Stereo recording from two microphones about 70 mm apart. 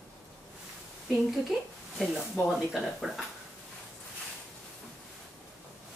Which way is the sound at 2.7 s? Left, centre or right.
Centre.